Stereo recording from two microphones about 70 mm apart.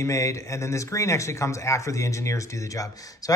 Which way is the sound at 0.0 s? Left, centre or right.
Left.